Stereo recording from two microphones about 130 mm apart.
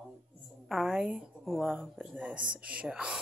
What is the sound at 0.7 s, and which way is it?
A woman's voice, 5° right (ahead or behind).